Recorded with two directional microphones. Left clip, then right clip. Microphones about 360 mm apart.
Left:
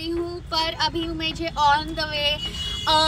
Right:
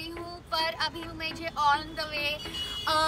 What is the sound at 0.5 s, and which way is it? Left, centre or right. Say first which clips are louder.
Child singing: left 5 dB; centre.